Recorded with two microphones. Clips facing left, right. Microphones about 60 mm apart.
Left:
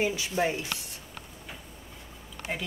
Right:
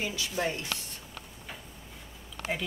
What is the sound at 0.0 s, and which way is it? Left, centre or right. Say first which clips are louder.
Speech: left 4 dB; left.